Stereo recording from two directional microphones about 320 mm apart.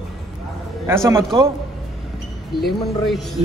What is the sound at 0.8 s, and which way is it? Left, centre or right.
Speech, centre.